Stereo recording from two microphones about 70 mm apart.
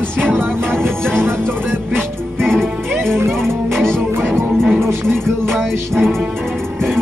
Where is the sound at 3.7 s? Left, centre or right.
Centre.